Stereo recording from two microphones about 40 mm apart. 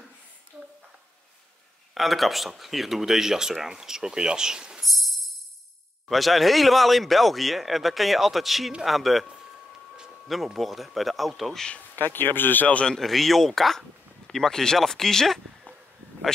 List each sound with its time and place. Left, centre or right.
0.5 s a sound: right
2.0 s speech: centre; by 4.8 s right
4.8 s music: centre
6.0 s speech: centre
11.9 s speech: left
12.9 s speech: centre